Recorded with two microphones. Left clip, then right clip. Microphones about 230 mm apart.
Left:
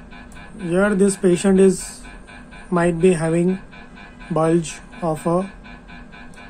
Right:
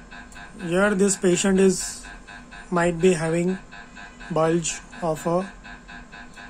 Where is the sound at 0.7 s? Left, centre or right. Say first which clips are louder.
Left 3 dB; centre.